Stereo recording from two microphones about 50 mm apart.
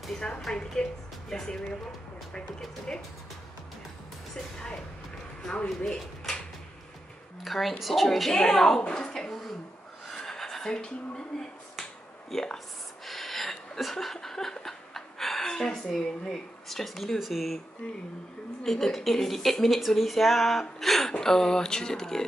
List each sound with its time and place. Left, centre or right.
0.5 s a woman's voice: centre
2.9 s a woman's voice: centre
5.4 s speech: centre
7.4 s speech: centre
8.3 s a woman's voice: centre
10.1 s a sound: centre
12.3 s a woman's voice: centre
13.0 s a sound: centre
17.8 s speech: left
18.6 s a woman's voice: centre